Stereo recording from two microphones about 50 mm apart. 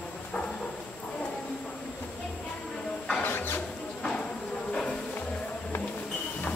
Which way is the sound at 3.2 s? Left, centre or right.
Left.